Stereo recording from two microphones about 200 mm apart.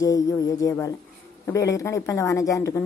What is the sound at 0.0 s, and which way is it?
Speech, 15° left (ahead or behind).